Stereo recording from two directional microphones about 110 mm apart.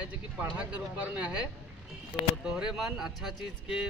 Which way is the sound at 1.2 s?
10° right (ahead or behind).